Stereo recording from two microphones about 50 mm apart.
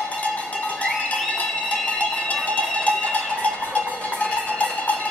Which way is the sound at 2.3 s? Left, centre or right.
Left.